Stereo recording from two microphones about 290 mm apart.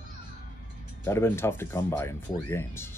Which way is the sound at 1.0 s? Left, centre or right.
Centre.